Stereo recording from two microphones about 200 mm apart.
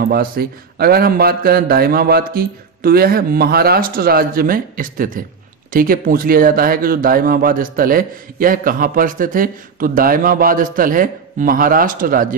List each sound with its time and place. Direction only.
0.1 s speech: 50° right (ahead or behind)